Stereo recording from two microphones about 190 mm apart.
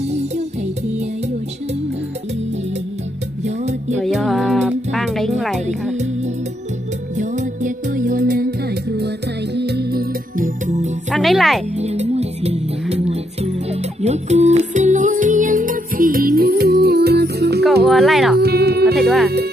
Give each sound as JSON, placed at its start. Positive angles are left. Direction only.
{"t": 3.4, "sound": "music", "side_deg": -35}
{"t": 4.0, "sound": "music", "side_deg": 0}
{"t": 7.2, "sound": "music", "side_deg": -40}
{"t": 11.1, "sound": "music", "side_deg": 0}
{"t": 11.7, "sound": "music", "side_deg": -35}
{"t": 17.8, "sound": "speech", "side_deg": 0}
{"t": 18.4, "sound": "music", "side_deg": -55}
{"t": 18.9, "sound": "speech", "side_deg": 0}